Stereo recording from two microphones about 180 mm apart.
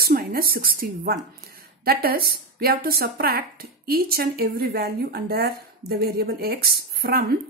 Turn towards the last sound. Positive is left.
turn(degrees=-60)  # may be behind; listen again after turning